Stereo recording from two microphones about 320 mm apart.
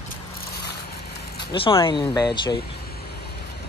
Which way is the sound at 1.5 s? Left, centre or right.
Centre.